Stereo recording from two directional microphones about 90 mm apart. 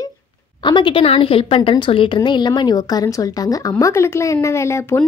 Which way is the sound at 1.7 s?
70° left (ahead or behind).